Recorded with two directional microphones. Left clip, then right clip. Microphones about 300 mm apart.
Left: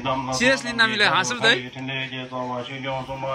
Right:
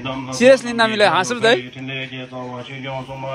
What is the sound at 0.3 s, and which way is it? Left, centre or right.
A man's voice, centre.